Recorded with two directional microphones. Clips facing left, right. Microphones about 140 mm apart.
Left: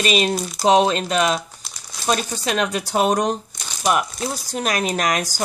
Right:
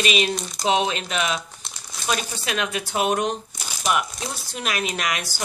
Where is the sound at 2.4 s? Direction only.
40° left (ahead or behind).